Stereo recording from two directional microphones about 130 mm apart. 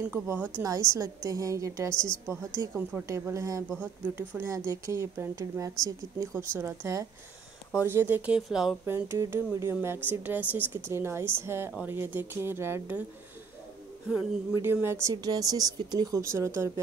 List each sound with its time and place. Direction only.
0.0 s speech: 20° right (ahead or behind)
3.1 s speech: 25° right (ahead or behind)
3.8 s speech: 10° right (ahead or behind)
8.5 s speech: 5° right (ahead or behind)
8.8 s speech: 20° right (ahead or behind)
14.5 s speech: 15° right (ahead or behind)
15.1 s speech: 30° right (ahead or behind)